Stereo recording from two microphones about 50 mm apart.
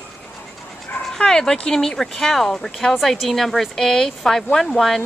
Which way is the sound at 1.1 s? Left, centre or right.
Centre.